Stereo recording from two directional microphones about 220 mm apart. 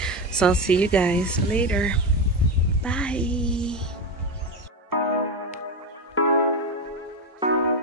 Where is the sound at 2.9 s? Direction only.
5° left (ahead or behind).